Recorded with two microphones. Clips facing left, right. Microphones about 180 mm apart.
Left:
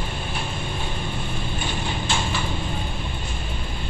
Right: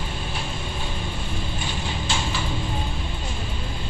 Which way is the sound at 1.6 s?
55° left (ahead or behind).